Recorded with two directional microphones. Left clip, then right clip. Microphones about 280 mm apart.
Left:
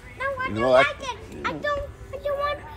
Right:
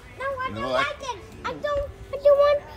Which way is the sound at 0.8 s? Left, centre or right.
Centre.